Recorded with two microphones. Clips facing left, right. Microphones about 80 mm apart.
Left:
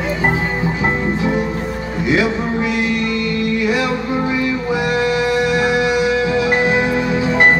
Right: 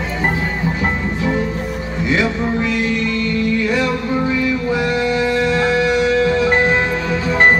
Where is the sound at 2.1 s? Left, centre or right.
Centre.